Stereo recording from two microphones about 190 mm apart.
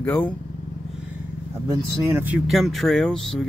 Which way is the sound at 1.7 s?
10° right (ahead or behind).